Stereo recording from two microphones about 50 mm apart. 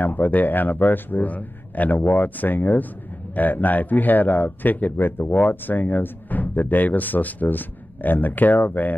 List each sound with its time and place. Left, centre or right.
0.0 s speech: left